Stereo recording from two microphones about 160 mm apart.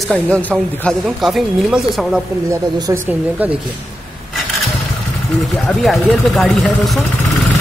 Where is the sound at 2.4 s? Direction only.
20° right (ahead or behind).